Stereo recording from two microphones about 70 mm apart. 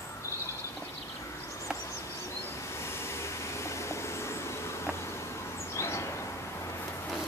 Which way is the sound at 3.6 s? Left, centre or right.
Left.